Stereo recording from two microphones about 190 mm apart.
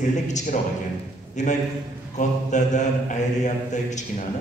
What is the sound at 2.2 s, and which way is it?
A man's voice, 40° left (ahead or behind).